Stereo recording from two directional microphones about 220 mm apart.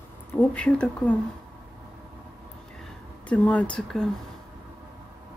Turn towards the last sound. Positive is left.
turn(degrees=5)  # may be behind; listen again after turning